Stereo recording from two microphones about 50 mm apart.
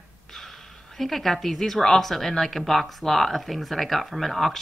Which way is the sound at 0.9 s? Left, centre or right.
Centre.